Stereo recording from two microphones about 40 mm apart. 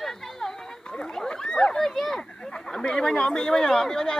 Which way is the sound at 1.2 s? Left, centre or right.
Centre.